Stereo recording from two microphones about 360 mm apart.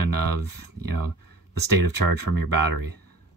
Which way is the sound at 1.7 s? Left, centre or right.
Right.